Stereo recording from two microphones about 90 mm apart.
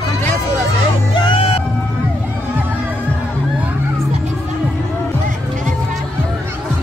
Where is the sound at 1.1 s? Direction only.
65° left (ahead or behind).